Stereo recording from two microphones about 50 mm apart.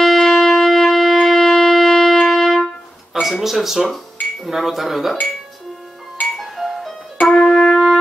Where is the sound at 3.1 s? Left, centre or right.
Centre.